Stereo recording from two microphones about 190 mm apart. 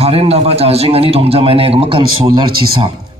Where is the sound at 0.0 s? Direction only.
30° right (ahead or behind).